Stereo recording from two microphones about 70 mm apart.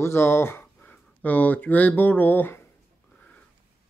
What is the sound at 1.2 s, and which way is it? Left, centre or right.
Speech, left.